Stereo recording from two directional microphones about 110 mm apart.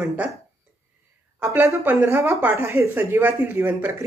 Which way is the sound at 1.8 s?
20° right (ahead or behind).